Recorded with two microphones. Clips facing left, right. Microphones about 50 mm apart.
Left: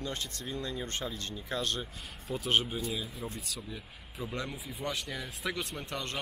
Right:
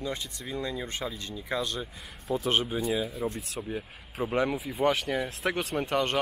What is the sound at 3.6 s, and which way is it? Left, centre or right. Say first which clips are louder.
Speech: right 8 dB; right.